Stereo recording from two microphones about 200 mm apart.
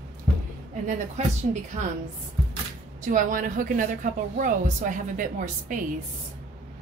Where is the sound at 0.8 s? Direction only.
35° right (ahead or behind).